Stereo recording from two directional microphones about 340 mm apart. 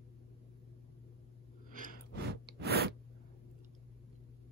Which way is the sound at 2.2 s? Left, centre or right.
Right.